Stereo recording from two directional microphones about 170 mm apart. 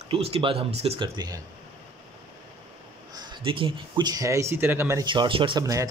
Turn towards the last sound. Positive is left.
turn(degrees=-20)  # may be behind; listen again after turning